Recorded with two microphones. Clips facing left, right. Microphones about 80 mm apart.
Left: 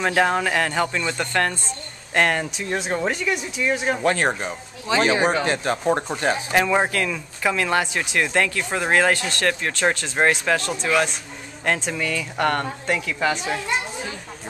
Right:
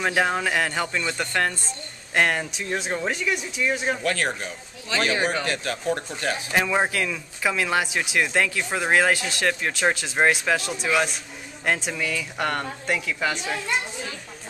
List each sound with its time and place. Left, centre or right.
0.0 s speech: centre
4.0 s speech: left
4.8 s speech: centre
6.5 s speech: centre